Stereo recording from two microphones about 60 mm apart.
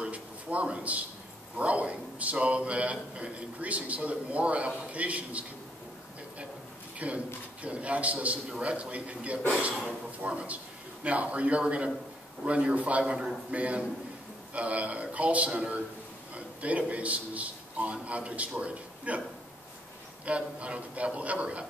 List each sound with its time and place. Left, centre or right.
0.0 s a sound: right
1.6 s a man's voice: right
7.0 s a man's voice: right
20.2 s a man's voice: right